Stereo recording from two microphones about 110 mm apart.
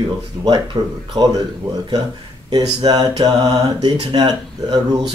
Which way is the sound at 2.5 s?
40° right (ahead or behind).